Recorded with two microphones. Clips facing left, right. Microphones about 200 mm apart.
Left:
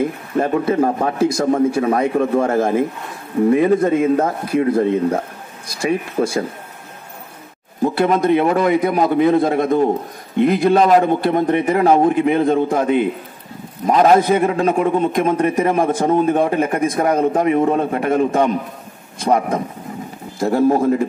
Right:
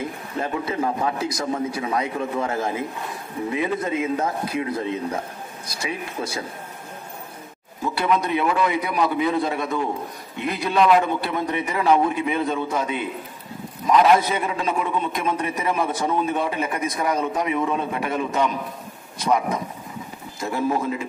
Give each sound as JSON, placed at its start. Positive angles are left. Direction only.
{"t": 0.4, "sound": "a man's voice", "side_deg": 50}
{"t": 7.8, "sound": "a man's voice", "side_deg": 45}